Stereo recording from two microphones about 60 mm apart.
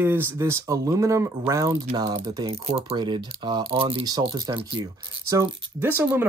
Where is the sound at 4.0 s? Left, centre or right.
Right.